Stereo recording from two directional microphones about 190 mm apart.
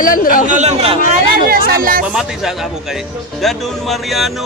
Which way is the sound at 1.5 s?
50° right (ahead or behind).